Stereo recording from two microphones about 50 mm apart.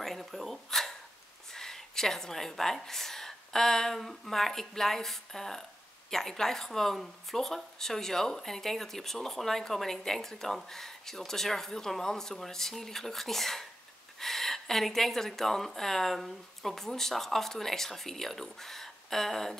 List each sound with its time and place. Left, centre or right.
0.0 s a woman's voice: centre